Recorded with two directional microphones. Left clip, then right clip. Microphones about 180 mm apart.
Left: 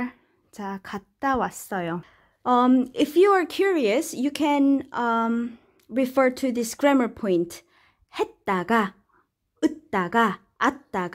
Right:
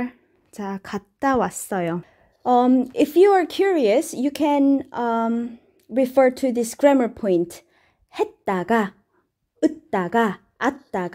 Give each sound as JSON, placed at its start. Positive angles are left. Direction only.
{"t": 0.0, "sound": "a woman's voice", "side_deg": -10}
{"t": 2.0, "sound": "a woman's voice", "side_deg": 0}